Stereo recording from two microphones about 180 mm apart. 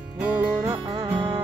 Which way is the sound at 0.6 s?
20° right (ahead or behind).